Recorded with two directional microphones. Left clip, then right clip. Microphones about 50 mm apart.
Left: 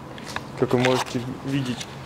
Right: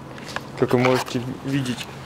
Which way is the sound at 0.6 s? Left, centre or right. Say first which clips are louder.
Right 2 dB; right.